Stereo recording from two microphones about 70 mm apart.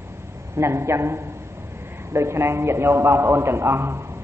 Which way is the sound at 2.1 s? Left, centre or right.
Right.